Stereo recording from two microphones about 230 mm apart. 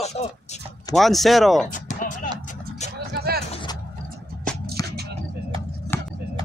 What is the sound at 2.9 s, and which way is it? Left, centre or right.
Music, right.